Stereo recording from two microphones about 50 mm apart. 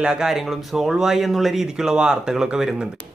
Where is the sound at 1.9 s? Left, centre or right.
Centre.